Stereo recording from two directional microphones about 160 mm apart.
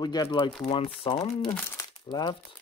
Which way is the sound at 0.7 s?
35° left (ahead or behind).